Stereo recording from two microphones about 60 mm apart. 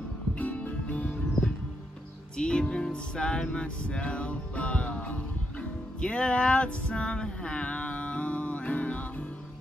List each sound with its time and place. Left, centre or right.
0.4 s music: left